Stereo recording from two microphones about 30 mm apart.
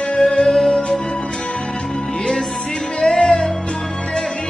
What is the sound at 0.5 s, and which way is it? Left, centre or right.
Music, centre.